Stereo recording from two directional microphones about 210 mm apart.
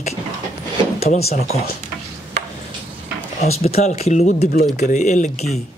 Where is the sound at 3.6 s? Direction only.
30° left (ahead or behind).